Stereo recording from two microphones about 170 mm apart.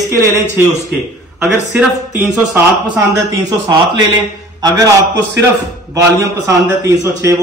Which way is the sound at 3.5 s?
25° right (ahead or behind).